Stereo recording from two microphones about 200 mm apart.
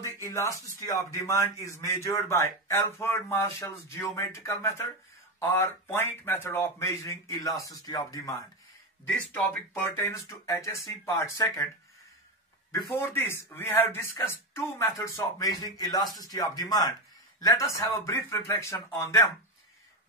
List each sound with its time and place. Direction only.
0.0 s speech: 15° left (ahead or behind)
12.9 s speech: 10° left (ahead or behind)